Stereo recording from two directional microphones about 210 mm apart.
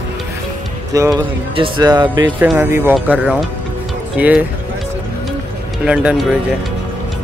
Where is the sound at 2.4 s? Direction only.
10° right (ahead or behind).